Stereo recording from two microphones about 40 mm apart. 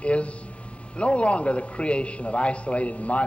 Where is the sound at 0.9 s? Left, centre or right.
Left.